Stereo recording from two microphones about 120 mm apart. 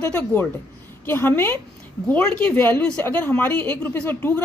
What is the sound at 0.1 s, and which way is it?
Speech, 15° left (ahead or behind).